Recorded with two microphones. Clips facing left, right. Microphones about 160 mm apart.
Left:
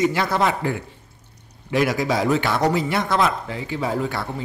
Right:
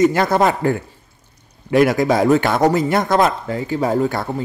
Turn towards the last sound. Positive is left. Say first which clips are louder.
# right 6 dB
turn(degrees=-45)  # may be behind; listen again after turning